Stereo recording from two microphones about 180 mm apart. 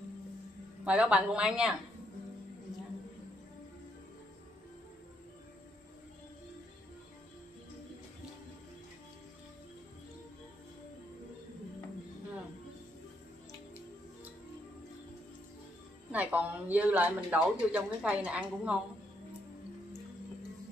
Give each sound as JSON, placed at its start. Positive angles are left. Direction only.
{"t": 0.8, "sound": "a woman's voice", "side_deg": -5}
{"t": 16.1, "sound": "a woman's voice", "side_deg": -10}